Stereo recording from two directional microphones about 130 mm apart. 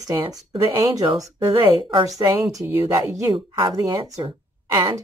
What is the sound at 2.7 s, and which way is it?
Speech, 15° right (ahead or behind).